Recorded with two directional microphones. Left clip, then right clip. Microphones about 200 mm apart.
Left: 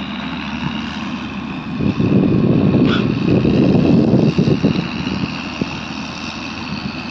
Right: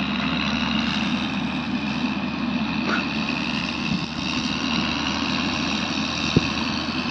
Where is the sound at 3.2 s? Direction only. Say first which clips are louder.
Left 10 dB; 55° right (ahead or behind).